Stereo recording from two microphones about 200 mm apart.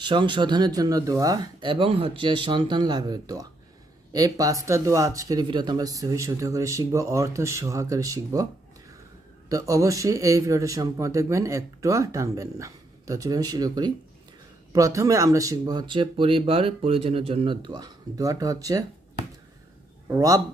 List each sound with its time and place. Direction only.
0.0 s speech: 25° right (ahead or behind)
9.5 s speech: 15° right (ahead or behind)
20.1 s speech: 15° right (ahead or behind)